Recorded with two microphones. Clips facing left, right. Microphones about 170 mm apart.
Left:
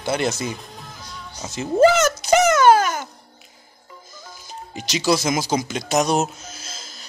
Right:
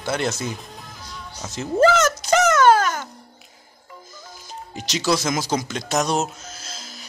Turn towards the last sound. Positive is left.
turn(degrees=5)  # may be behind; listen again after turning